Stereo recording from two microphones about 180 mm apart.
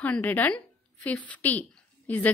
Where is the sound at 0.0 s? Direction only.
10° left (ahead or behind).